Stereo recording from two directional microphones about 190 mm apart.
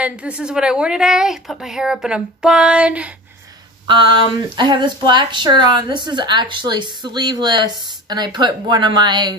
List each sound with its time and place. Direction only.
0.0 s a woman's voice: 5° right (ahead or behind)
3.8 s speech: 25° right (ahead or behind)